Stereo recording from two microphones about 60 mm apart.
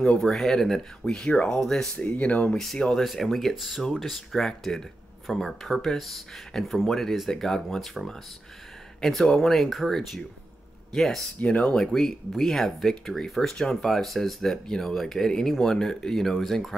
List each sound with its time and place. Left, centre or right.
0.2 s speech: centre
1.3 s speech: left
1.6 s speech: centre
2.0 s speech: left
3.0 s speech: centre
11.3 s speech: left; by 16.7 s centre